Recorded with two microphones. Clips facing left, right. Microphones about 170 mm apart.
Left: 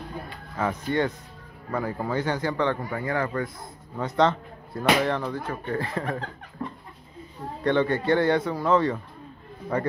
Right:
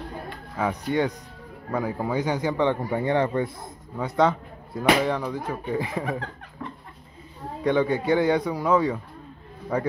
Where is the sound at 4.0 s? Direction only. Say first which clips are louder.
Right 1 dB; 10° right (ahead or behind).